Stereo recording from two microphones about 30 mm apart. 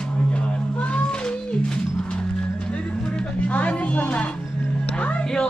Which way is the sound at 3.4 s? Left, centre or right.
Left.